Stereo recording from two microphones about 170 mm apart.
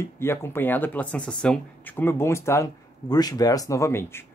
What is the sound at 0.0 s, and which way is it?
Speech, 15° left (ahead or behind).